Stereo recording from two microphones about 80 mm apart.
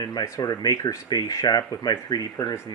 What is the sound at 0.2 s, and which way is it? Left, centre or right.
Speech, left.